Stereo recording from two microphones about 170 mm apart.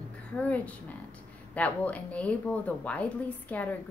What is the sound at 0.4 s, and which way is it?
Speech, 10° left (ahead or behind).